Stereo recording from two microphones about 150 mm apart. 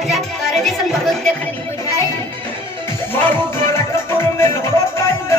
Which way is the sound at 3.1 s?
15° left (ahead or behind).